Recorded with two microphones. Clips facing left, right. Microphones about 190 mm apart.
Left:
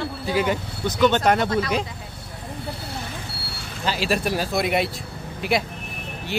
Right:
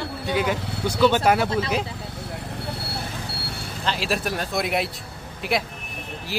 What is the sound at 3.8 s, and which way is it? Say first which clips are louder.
A man's voice: left 3 dB; centre (ahead or behind).